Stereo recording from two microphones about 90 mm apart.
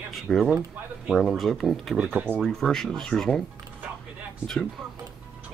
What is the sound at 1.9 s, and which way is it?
Speech, 15° right (ahead or behind).